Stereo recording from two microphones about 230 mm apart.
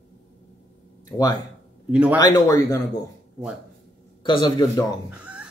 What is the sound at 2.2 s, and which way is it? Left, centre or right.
Speech, centre.